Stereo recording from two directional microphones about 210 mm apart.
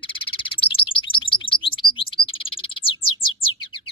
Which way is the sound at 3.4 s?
25° left (ahead or behind).